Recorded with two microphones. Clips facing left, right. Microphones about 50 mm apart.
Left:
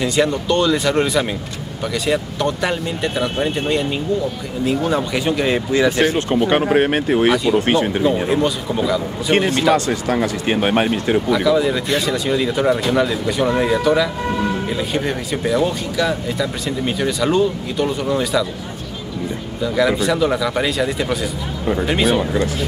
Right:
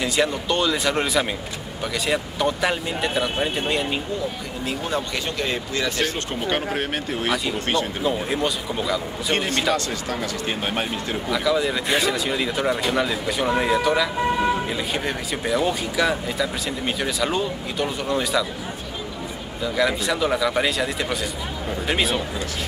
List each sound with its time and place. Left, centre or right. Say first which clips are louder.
0.0 s speech: left 4 dB; centre
6.5 s speech: left 8 dB; left
7.2 s speech: left 5 dB; centre
7.5 s speech: left 8 dB; left
8.3 s speech: left 6 dB; centre
10.2 s speech: left 8 dB; left
11.2 s speech: left 3 dB; centre
19.6 s speech: left 5 dB; centre